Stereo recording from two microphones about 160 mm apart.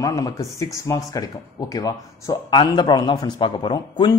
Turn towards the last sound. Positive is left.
turn(degrees=30)  # may be behind; listen again after turning